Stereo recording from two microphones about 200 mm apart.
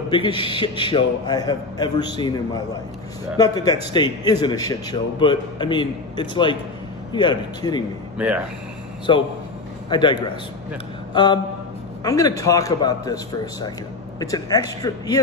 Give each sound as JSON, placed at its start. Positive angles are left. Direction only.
{"t": 0.1, "sound": "a man's voice", "side_deg": 25}
{"t": 9.1, "sound": "a man's voice", "side_deg": 25}
{"t": 12.0, "sound": "a man's voice", "side_deg": 20}